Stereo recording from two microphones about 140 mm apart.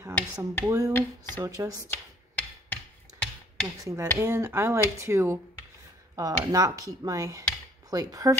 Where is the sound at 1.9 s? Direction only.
10° left (ahead or behind).